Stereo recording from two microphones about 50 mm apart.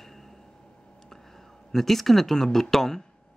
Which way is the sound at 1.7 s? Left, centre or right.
Centre.